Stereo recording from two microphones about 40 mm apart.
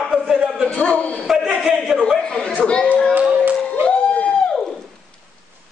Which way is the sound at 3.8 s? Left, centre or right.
Left.